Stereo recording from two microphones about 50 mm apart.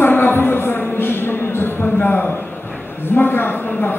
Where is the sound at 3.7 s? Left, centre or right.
Left.